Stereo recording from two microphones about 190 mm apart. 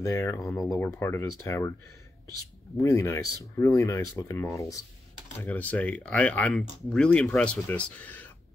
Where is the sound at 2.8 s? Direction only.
15° left (ahead or behind).